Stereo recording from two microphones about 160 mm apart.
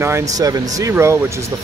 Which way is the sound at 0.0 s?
20° right (ahead or behind).